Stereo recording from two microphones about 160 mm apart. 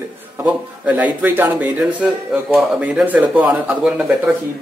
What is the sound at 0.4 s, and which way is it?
Speech, 10° right (ahead or behind).